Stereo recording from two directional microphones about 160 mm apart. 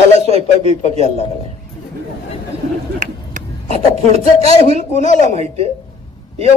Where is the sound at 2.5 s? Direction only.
40° right (ahead or behind).